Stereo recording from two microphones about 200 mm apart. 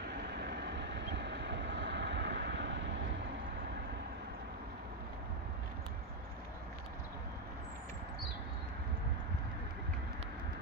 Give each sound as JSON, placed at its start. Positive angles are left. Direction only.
{"t": 0.0, "sound": "vehicle", "side_deg": -55}